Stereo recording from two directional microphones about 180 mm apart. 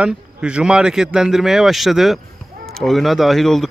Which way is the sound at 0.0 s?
5° right (ahead or behind).